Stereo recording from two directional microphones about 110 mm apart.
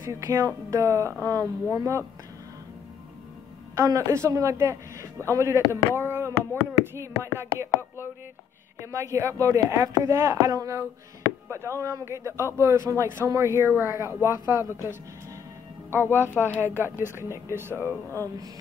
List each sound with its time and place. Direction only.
0.0 s a woman's voice: 30° right (ahead or behind)
3.7 s speech: 25° right (ahead or behind)
16.0 s speech: 20° left (ahead or behind)
16.3 s speech: 15° right (ahead or behind)
17.8 s speech: 20° left (ahead or behind)